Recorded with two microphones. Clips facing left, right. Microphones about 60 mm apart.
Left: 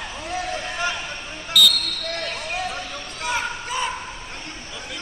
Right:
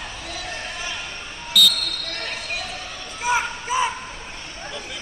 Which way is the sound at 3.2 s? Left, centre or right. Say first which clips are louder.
Right 4 dB; centre.